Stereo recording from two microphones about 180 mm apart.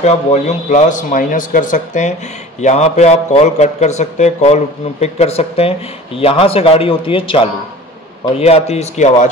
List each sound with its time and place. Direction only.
0.0 s a man's voice: 40° left (ahead or behind)